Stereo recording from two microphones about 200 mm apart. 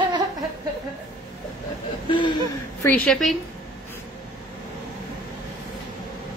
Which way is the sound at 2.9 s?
5° left (ahead or behind).